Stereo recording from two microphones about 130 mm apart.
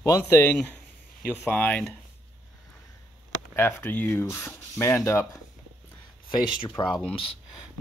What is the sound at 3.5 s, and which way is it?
Speech, 15° left (ahead or behind).